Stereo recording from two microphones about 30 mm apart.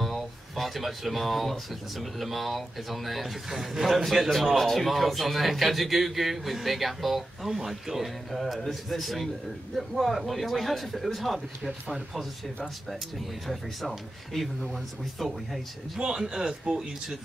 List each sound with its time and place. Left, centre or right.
0.0 s a man's voice: centre
13.5 s a man's voice: centre
16.0 s speech: right
16.7 s speech: right